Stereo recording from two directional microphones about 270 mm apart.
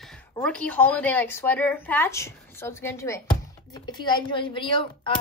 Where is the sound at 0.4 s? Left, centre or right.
Centre.